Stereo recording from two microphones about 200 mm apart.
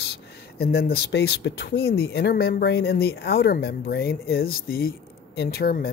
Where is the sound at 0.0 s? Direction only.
55° left (ahead or behind).